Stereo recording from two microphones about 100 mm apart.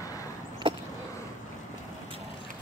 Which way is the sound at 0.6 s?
55° right (ahead or behind).